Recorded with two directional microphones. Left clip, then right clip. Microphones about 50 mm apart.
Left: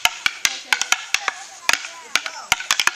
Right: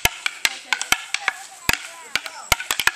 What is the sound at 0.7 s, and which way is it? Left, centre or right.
Wood block, left.